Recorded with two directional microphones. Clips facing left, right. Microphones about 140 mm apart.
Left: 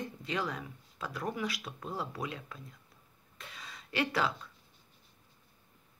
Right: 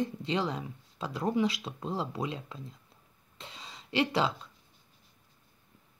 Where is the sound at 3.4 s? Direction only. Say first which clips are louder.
Right 2 dB; 25° right (ahead or behind).